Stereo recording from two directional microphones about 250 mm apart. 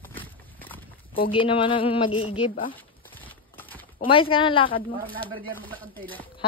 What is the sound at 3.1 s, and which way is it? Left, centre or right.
Clip-clop, centre.